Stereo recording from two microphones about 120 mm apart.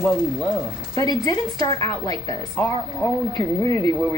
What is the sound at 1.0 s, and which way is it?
Speech, 35° left (ahead or behind).